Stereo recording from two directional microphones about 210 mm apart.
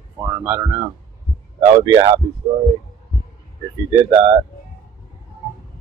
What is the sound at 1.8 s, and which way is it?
Speech, 20° right (ahead or behind).